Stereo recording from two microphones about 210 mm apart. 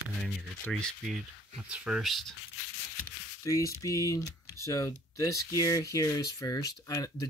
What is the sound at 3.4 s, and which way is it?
Speech, 15° left (ahead or behind).